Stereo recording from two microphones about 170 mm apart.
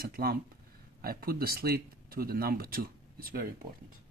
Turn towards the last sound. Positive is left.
turn(degrees=-60)  # may be behind; listen again after turning